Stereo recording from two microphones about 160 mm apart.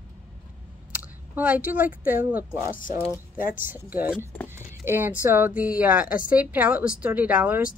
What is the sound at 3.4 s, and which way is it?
Speech, 60° left (ahead or behind).